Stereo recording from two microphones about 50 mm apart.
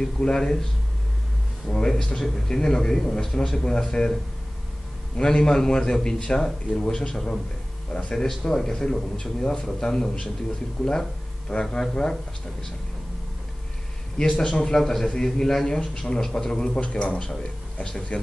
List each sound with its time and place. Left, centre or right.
0.0 s a man's voice: centre
1.7 s a man's voice: centre
14.4 s a man's voice: centre